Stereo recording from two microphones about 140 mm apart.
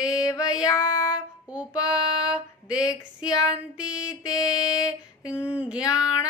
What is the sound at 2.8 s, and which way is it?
Female singing, 25° left (ahead or behind).